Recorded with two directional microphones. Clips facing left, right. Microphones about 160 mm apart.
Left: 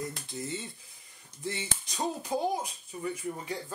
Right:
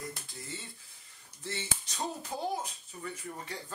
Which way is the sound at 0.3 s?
20° left (ahead or behind).